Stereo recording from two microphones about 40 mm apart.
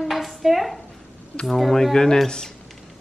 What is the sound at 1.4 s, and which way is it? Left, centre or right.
Speech, centre.